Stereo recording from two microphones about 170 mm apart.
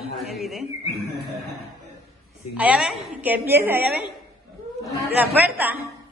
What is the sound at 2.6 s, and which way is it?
A woman's voice, 5° right (ahead or behind).